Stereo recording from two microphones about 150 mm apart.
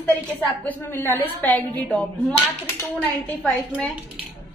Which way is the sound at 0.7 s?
15° left (ahead or behind).